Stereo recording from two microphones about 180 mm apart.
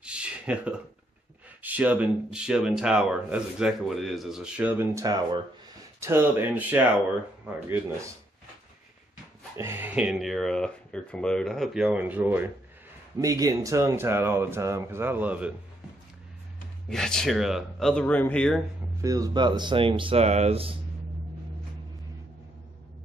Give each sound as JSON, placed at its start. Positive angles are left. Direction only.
{"t": 0.0, "sound": "a sound", "side_deg": -5}
{"t": 1.6, "sound": "speech", "side_deg": -10}
{"t": 9.6, "sound": "speech", "side_deg": -15}
{"t": 16.9, "sound": "speech", "side_deg": 5}
{"t": 18.9, "sound": "speech", "side_deg": -20}